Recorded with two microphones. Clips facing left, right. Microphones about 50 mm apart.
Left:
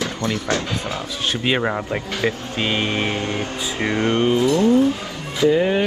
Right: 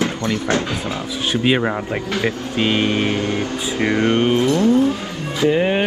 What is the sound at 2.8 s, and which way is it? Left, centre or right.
Mantra, left.